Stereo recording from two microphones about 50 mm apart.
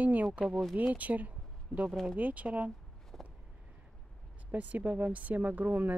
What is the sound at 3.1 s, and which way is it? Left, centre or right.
Vehicle, centre.